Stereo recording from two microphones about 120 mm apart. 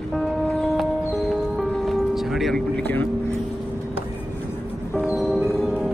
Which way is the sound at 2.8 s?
15° left (ahead or behind).